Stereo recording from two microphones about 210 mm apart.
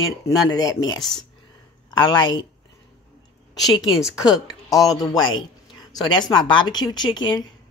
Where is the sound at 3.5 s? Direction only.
20° left (ahead or behind).